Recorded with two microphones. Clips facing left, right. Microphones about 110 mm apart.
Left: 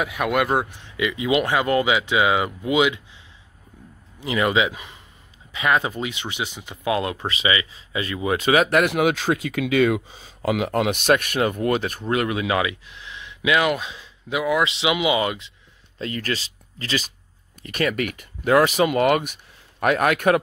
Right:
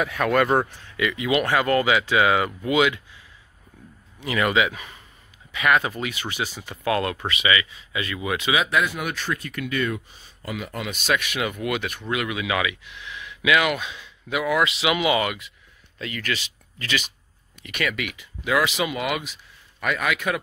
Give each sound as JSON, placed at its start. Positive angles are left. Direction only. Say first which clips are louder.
{"t": 0.0, "sound": "speech", "louder": "right 1 dB", "side_deg": 10}
{"t": 0.8, "sound": "speech", "louder": "left 1 dB", "side_deg": 20}
{"t": 4.2, "sound": "speech", "louder": "left 1 dB", "side_deg": 25}